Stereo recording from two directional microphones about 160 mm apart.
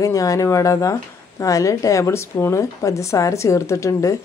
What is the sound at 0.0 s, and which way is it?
Speech, 20° left (ahead or behind).